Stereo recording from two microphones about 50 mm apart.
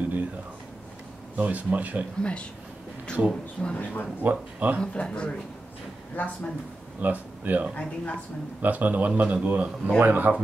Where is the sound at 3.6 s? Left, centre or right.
Left.